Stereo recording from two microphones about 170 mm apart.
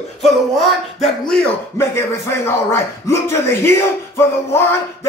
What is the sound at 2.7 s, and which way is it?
Speech, 15° left (ahead or behind).